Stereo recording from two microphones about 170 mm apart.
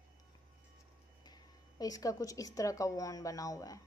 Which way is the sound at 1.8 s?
20° left (ahead or behind).